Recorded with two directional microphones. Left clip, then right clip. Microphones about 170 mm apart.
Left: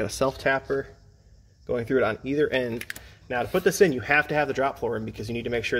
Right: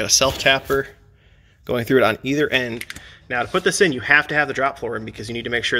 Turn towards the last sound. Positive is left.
turn(degrees=0)  # may be behind; listen again after turning